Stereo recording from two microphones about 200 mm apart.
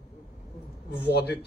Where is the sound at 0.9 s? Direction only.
55° left (ahead or behind).